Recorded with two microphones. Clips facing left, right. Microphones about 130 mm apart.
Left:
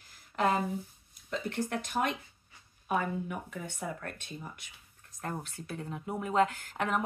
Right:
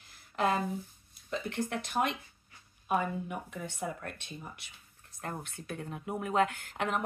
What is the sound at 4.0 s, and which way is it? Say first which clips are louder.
Speech: left 1 dB; 45° left (ahead or behind).